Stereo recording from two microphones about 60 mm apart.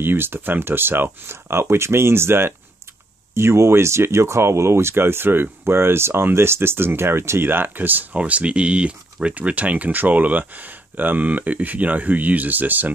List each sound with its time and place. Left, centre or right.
0.0 s speech: right